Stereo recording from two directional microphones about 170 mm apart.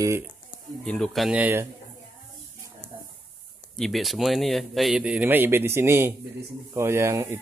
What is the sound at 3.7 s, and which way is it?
Speech, centre (ahead or behind).